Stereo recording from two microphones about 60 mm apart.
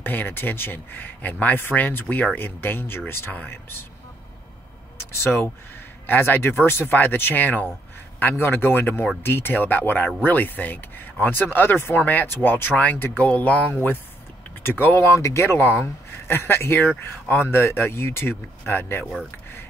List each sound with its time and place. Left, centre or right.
0.0 s speech: left
5.1 s speech: left
11.9 s speech: left
12.7 s speech: left
14.6 s speech: left
15.0 s speech: left